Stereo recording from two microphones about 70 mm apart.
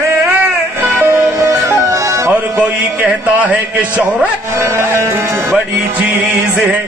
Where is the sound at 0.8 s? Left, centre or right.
Right.